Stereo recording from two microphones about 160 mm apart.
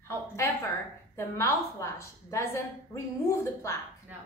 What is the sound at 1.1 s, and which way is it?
A woman's voice, 20° left (ahead or behind).